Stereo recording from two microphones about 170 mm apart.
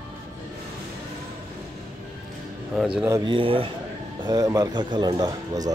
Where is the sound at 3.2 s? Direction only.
30° right (ahead or behind).